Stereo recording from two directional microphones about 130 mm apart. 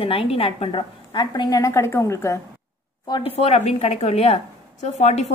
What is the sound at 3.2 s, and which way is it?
A woman's voice, 50° left (ahead or behind).